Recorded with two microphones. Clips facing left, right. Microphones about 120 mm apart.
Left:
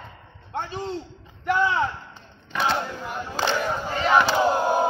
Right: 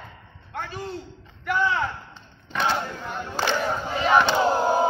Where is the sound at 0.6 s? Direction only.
25° left (ahead or behind).